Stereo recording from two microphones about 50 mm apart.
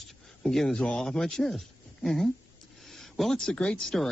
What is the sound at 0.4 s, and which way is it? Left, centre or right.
A man's voice, centre.